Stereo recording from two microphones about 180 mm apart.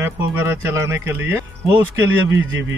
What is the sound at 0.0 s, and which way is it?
Speech, 15° right (ahead or behind).